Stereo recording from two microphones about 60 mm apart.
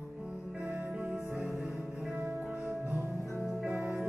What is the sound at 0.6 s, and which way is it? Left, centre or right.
Music, right.